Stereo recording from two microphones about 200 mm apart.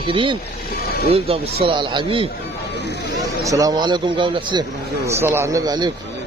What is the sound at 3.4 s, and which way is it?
Speech, 15° right (ahead or behind).